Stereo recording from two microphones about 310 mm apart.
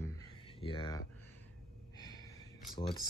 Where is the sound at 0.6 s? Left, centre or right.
Centre.